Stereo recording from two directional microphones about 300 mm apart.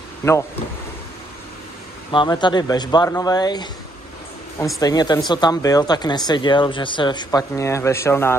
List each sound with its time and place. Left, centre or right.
2.0 s speech: centre